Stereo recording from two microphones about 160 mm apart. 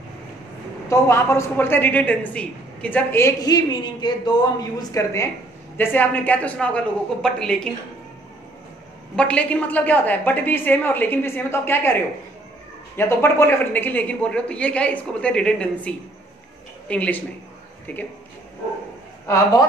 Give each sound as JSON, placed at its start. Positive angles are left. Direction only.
{"t": 0.8, "sound": "a man's voice", "side_deg": 15}
{"t": 9.1, "sound": "a man's voice", "side_deg": 10}
{"t": 12.9, "sound": "a man's voice", "side_deg": 15}